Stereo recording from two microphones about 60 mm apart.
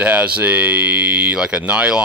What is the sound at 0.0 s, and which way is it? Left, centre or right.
Speech, right.